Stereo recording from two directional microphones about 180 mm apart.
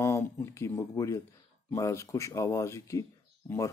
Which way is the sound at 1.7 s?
15° left (ahead or behind).